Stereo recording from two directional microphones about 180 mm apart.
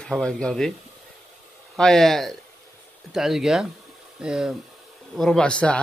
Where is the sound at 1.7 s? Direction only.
Centre (ahead or behind).